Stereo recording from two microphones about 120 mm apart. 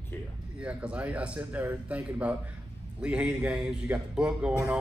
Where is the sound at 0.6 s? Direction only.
10° right (ahead or behind).